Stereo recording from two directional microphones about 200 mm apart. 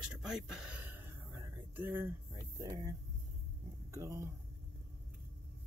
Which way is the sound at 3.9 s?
15° right (ahead or behind).